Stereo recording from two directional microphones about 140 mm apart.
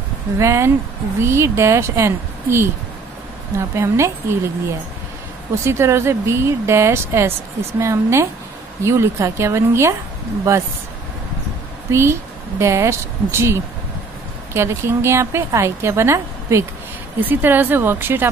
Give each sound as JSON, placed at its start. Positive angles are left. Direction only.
{"t": 0.4, "sound": "a woman's voice", "side_deg": -20}
{"t": 11.9, "sound": "a woman's voice", "side_deg": -20}